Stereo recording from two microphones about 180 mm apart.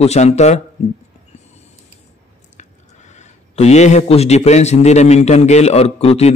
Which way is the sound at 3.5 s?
35° left (ahead or behind).